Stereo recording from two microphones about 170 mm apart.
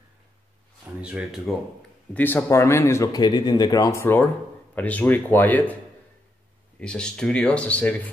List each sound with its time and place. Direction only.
1.0 s speech: 5° right (ahead or behind)
2.1 s speech: 10° left (ahead or behind)
6.8 s speech: 5° left (ahead or behind)